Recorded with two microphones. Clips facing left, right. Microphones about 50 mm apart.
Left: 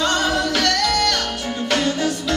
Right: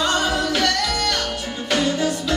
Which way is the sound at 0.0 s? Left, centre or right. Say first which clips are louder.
Left 1 dB; centre.